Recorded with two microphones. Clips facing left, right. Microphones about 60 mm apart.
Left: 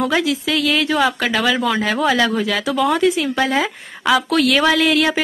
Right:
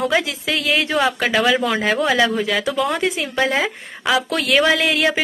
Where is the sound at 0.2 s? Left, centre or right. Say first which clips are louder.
Left 5 dB; right.